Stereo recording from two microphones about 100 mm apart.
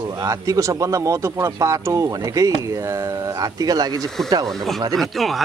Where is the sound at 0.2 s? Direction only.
35° right (ahead or behind).